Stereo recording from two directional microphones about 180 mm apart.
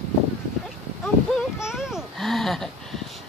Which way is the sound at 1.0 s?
Centre (ahead or behind).